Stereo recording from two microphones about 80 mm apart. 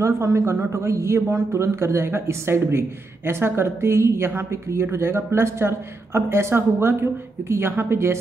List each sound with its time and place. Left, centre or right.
0.0 s speech: right